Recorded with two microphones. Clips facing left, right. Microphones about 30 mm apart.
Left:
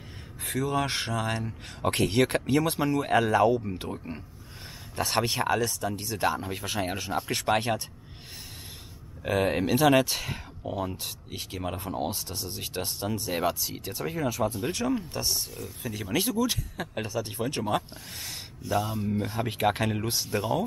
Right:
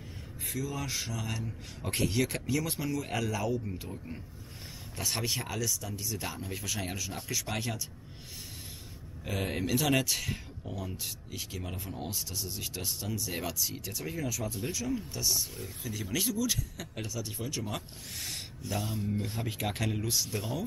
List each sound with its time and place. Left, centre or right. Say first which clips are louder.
0.5 s speech: left 8 dB; left
4.9 s speech: left 7 dB; left
6.2 s speech: left 9 dB; left
7.2 s speech: left 9 dB; left
9.2 s speech: left 8 dB; left
14.7 s speech: left 6 dB; left
18.2 s speech: even; centre
19.4 s speech: left 8 dB; left